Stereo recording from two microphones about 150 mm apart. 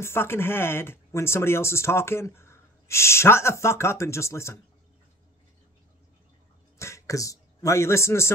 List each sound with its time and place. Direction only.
0.0 s speech: 15° left (ahead or behind)
6.8 s speech: 20° left (ahead or behind)